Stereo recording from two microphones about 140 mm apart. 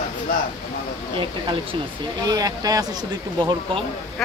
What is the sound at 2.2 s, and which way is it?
Speech, 25° right (ahead or behind).